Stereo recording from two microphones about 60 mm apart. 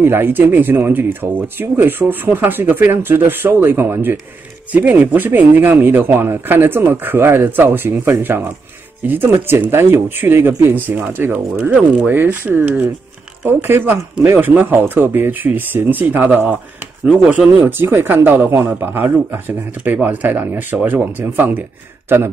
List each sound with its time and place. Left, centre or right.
0.0 s speech: right
9.7 s speech: right
13.5 s speech: right
17.6 s speech: right